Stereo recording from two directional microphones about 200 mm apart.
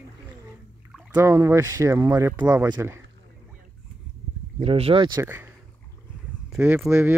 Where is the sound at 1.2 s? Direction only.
15° right (ahead or behind).